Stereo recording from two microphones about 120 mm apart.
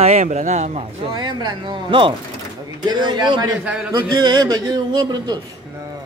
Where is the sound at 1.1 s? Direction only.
35° right (ahead or behind).